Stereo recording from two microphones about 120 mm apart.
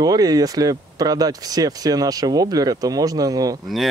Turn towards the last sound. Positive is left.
turn(degrees=-30)  # may be behind; listen again after turning